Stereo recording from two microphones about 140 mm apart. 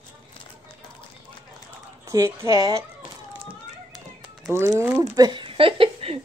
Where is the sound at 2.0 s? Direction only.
20° right (ahead or behind).